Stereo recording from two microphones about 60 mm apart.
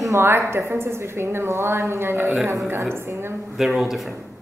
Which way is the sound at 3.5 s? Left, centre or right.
Centre.